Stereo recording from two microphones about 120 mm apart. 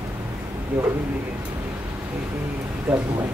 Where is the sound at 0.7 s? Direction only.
15° right (ahead or behind).